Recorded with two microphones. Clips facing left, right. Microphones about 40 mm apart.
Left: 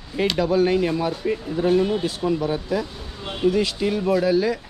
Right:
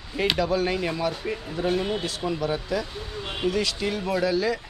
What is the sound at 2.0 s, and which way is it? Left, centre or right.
Speech, centre.